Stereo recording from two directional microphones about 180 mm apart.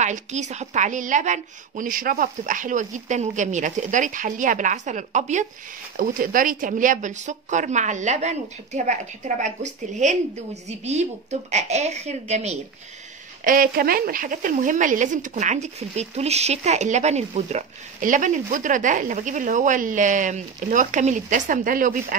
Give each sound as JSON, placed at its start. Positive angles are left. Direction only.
{"t": 0.0, "sound": "a woman's voice", "side_deg": -40}
{"t": 13.4, "sound": "a woman's voice", "side_deg": -50}